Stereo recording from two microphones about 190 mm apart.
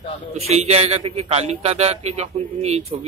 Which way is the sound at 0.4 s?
35° right (ahead or behind).